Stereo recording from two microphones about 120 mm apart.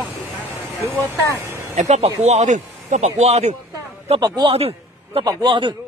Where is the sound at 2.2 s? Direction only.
90° right; by 3.5 s 70° right (ahead or behind).